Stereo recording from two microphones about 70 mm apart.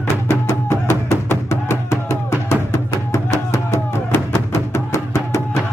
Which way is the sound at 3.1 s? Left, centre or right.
Left.